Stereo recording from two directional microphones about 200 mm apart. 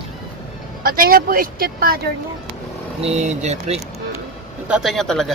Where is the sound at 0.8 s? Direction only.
45° right (ahead or behind).